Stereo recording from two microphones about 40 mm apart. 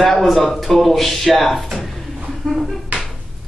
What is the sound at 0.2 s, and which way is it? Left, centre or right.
Speech, centre.